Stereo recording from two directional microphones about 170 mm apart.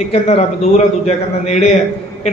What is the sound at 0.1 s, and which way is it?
A man's voice, 40° left (ahead or behind).